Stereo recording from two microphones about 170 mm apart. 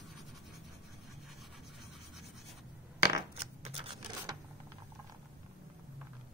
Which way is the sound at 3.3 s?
35° right (ahead or behind).